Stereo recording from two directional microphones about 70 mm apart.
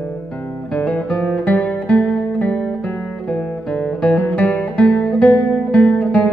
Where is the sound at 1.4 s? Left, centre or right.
Centre.